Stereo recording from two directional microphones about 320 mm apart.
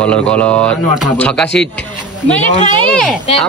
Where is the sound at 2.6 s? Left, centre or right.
Centre.